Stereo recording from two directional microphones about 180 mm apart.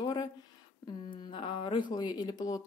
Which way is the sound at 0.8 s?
25° left (ahead or behind).